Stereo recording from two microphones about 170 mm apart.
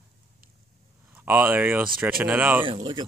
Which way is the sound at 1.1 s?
10° right (ahead or behind).